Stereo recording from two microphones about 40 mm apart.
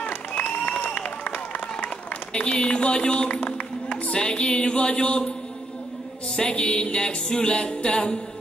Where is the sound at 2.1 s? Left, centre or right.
Left.